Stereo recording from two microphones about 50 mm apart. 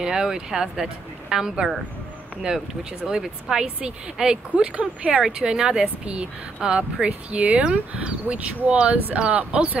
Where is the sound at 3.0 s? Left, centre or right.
Centre.